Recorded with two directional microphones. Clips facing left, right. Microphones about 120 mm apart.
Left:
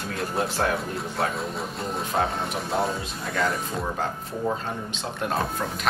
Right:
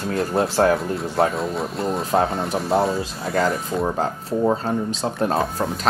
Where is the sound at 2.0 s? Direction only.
35° right (ahead or behind).